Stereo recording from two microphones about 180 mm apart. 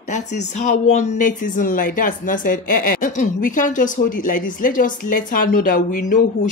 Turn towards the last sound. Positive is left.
turn(degrees=45)  # may be behind; listen again after turning